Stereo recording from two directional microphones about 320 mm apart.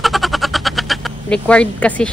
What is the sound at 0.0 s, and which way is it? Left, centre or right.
Speech, centre.